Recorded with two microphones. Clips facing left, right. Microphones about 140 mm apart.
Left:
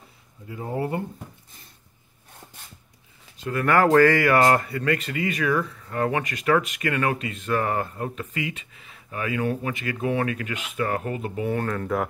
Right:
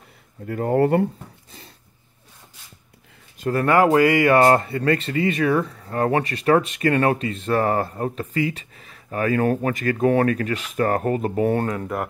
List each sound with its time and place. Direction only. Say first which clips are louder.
0.5 s speech: right 10 dB; 70° right (ahead or behind)
3.3 s a sound: right 5 dB; 45° right (ahead or behind)
3.6 s speech: right 1 dB; 20° right (ahead or behind); by 11.6 s 40° right (ahead or behind)
11.6 s speech: right 2 dB; 20° right (ahead or behind)